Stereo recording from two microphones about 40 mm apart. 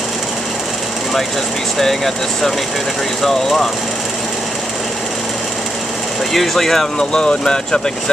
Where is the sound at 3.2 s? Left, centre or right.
Centre.